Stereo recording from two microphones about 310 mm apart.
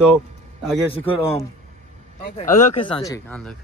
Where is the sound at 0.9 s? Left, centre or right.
Centre.